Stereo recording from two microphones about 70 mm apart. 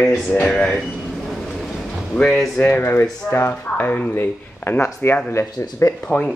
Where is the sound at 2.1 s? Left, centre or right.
Centre; by 5.2 s left.